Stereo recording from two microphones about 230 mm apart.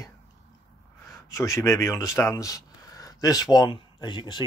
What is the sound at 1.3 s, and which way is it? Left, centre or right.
Speech, centre.